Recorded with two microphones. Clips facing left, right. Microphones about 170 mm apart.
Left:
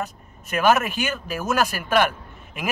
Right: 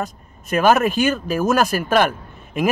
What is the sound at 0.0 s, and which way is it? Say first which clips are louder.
Speech: right 3 dB; 35° right (ahead or behind).